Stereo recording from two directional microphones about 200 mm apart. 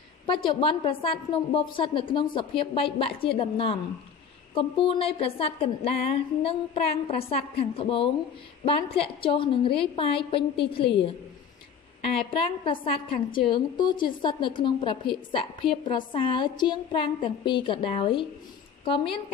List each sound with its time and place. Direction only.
0.3 s a woman's voice: 25° left (ahead or behind)
12.2 s a woman's voice: 25° left (ahead or behind)